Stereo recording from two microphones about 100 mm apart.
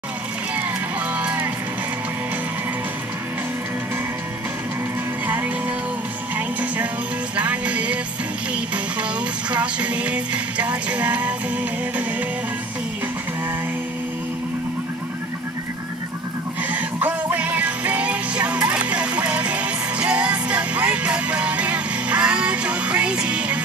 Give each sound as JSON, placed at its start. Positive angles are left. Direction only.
{"t": 1.1, "sound": "music", "side_deg": -15}
{"t": 5.2, "sound": "music", "side_deg": -20}
{"t": 9.5, "sound": "music", "side_deg": -15}
{"t": 16.7, "sound": "music", "side_deg": -15}